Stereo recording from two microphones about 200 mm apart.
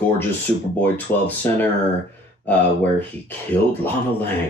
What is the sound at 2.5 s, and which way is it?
Speech, 10° left (ahead or behind).